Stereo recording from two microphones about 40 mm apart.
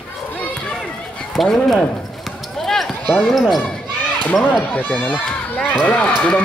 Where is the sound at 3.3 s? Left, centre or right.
Centre.